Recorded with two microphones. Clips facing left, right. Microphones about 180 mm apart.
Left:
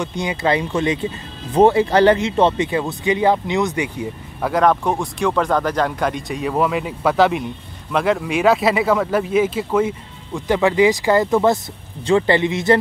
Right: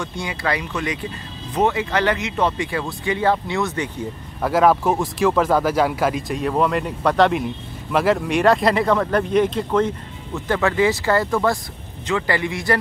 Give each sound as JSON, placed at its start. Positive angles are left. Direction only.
{"t": 0.0, "sound": "speech", "side_deg": 20}
{"t": 4.4, "sound": "speech", "side_deg": -5}